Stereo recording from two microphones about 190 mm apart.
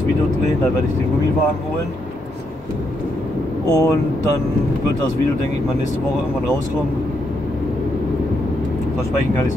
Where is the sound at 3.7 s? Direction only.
20° left (ahead or behind).